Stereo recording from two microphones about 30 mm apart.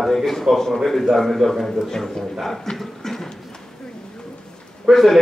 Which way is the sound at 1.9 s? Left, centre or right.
Centre.